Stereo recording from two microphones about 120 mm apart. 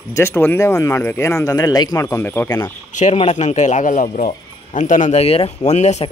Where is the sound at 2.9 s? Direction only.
70° left (ahead or behind).